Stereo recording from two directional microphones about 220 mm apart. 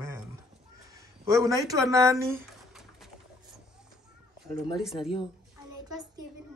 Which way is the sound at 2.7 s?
Centre (ahead or behind).